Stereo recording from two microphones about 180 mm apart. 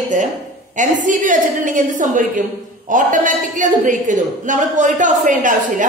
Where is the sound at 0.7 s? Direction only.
45° right (ahead or behind).